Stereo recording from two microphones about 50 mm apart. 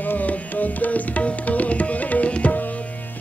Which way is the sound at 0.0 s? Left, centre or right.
Left.